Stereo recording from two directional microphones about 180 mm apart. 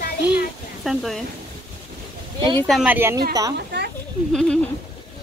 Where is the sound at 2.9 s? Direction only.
15° right (ahead or behind).